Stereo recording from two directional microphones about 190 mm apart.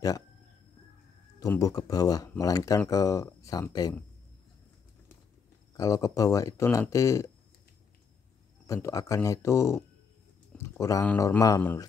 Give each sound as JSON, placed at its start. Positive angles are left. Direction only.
{"t": 1.4, "sound": "speech", "side_deg": 20}
{"t": 5.8, "sound": "speech", "side_deg": 20}
{"t": 8.6, "sound": "speech", "side_deg": 15}